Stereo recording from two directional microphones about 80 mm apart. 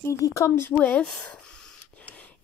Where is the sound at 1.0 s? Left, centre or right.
Centre.